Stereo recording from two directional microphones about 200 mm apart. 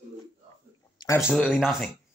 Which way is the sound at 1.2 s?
Centre (ahead or behind).